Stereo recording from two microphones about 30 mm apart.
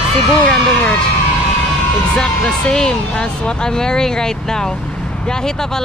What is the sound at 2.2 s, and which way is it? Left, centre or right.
Speech, left.